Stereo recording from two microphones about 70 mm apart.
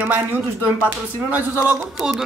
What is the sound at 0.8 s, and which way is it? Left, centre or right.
Speech, right.